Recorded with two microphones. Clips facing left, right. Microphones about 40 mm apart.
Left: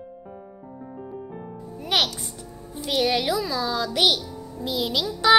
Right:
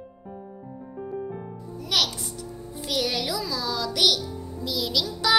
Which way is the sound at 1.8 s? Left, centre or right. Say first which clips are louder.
Left 2 dB; left.